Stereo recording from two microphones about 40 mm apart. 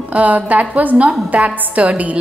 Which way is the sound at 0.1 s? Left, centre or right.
Right.